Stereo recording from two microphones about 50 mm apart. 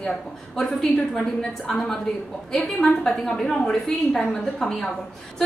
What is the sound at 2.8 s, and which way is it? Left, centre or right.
A woman's voice, centre.